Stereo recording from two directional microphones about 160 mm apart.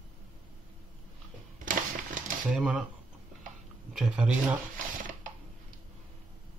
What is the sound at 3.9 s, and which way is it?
Speech, 5° right (ahead or behind).